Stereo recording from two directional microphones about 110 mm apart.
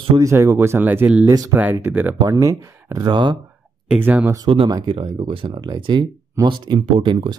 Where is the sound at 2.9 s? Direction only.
45° right (ahead or behind).